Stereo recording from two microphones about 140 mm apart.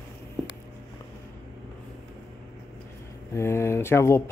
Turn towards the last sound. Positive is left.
turn(degrees=20)  # may be behind; listen again after turning